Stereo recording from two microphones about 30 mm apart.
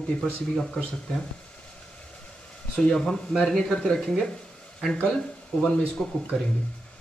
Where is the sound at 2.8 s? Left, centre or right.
Centre.